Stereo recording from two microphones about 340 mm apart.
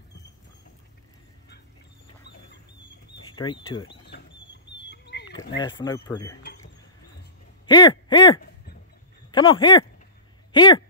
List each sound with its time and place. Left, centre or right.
3.7 s speech: centre
4.0 s a sound: left
5.6 s speech: centre
7.6 s speech: centre